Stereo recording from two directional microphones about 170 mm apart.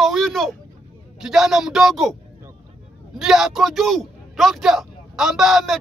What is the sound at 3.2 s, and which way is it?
A man's voice, centre (ahead or behind).